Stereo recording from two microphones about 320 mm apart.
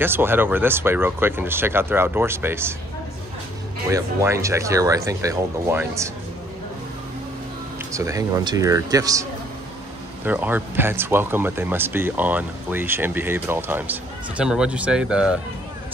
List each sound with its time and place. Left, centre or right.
0.0 s speech: centre
3.9 s speech: centre
7.9 s speech: centre